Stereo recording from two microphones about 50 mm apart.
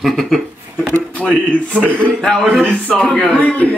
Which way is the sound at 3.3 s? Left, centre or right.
Left.